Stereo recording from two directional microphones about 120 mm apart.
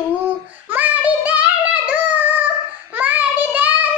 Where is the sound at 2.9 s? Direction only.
15° right (ahead or behind).